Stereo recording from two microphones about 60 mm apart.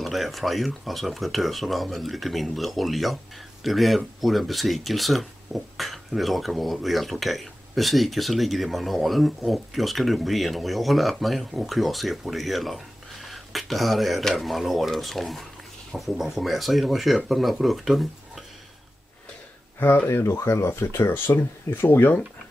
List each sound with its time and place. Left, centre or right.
0.0 s speech: centre
19.8 s speech: left
20.1 s speech: left
21.3 s speech: left